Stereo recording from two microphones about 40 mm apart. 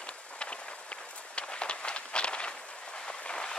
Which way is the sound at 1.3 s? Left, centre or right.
Left.